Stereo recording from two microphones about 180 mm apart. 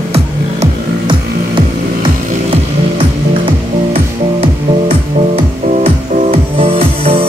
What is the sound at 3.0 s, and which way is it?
Music, 30° right (ahead or behind).